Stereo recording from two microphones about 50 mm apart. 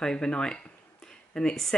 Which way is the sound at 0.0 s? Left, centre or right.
Centre.